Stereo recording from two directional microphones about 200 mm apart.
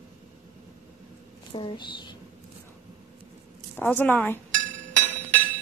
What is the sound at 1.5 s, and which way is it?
Speech, 25° left (ahead or behind).